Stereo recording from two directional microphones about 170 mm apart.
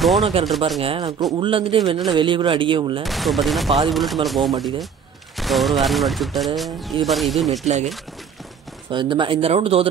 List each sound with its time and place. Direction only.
0.2 s speech: 35° right (ahead or behind)
3.0 s speech: centre (ahead or behind)
7.6 s speech: 40° right (ahead or behind)
8.9 s speech: 30° right (ahead or behind)